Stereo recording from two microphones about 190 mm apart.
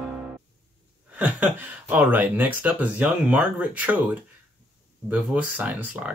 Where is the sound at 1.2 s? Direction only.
5° right (ahead or behind).